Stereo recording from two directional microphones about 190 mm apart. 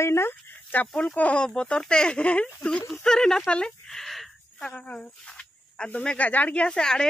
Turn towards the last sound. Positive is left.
turn(degrees=5)  # may be behind; listen again after turning